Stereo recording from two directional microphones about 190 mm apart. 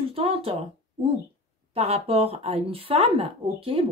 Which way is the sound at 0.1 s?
30° right (ahead or behind).